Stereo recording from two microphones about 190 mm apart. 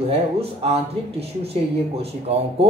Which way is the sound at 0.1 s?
30° right (ahead or behind).